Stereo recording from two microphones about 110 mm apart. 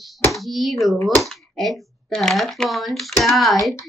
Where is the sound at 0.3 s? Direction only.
Centre (ahead or behind).